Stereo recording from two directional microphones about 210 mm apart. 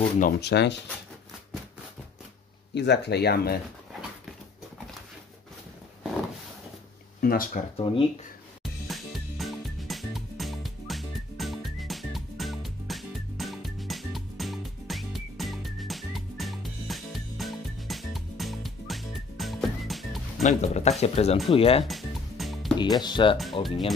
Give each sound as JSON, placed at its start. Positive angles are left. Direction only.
{"t": 0.2, "sound": "speech", "side_deg": 50}
{"t": 2.7, "sound": "speech", "side_deg": 55}
{"t": 7.2, "sound": "speech", "side_deg": 45}
{"t": 7.7, "sound": "speech", "side_deg": 25}
{"t": 8.8, "sound": "music", "side_deg": 0}
{"t": 20.4, "sound": "speech", "side_deg": 35}
{"t": 21.8, "sound": "music", "side_deg": 0}
{"t": 22.8, "sound": "speech", "side_deg": 20}
{"t": 23.3, "sound": "speech", "side_deg": 0}